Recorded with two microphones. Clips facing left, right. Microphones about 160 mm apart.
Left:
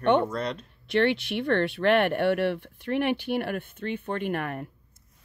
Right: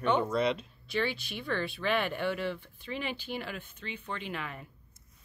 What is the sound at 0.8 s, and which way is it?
Speech, 70° left (ahead or behind).